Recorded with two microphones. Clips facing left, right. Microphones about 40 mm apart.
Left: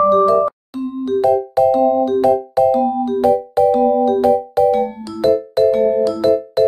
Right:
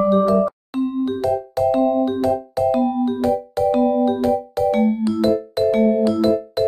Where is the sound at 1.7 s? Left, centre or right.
Right.